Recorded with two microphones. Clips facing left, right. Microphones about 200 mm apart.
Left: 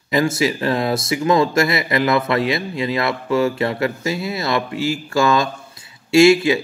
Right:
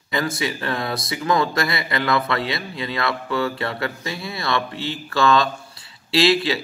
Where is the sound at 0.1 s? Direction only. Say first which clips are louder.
Left 6 dB; 25° left (ahead or behind).